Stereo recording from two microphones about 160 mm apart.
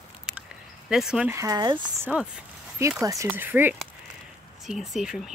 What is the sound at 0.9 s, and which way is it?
Speech, 5° right (ahead or behind).